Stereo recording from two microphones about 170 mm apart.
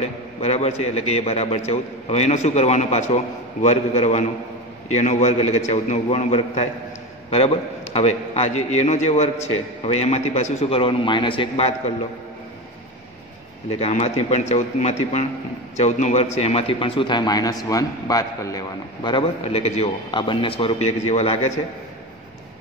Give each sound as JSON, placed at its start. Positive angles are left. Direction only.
{"t": 0.0, "sound": "a man's voice", "side_deg": 40}
{"t": 13.7, "sound": "a man's voice", "side_deg": 40}
{"t": 19.0, "sound": "a man's voice", "side_deg": 30}